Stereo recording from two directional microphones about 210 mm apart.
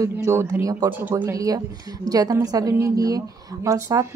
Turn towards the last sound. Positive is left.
turn(degrees=-15)  # may be behind; listen again after turning